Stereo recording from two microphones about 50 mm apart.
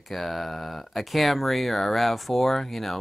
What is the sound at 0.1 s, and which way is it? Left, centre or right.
Speech, centre.